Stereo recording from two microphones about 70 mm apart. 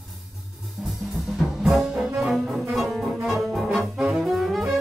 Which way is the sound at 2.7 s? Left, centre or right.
Centre.